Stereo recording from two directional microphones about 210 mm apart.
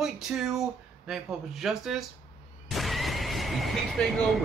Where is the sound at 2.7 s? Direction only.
Centre (ahead or behind).